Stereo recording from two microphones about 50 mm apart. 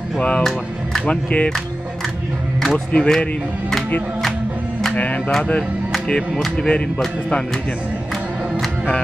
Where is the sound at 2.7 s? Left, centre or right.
Centre.